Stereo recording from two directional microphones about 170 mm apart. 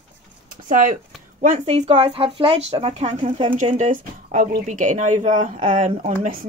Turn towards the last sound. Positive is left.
turn(degrees=-35)  # may be behind; listen again after turning